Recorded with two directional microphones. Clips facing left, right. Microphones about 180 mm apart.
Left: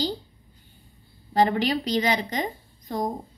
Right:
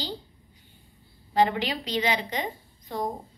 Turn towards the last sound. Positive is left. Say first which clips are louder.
# left 3 dB
turn(degrees=40)  # may be behind; listen again after turning